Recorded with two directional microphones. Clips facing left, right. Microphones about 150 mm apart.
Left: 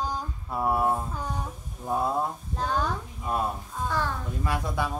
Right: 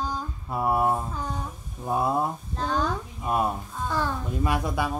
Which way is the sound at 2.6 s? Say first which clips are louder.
Right 1 dB; 10° left (ahead or behind).